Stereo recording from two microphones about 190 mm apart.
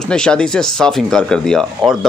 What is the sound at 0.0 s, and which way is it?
Speech, 5° left (ahead or behind).